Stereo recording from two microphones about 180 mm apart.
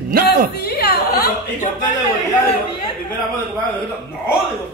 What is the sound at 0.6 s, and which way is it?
A woman's voice, 60° left (ahead or behind).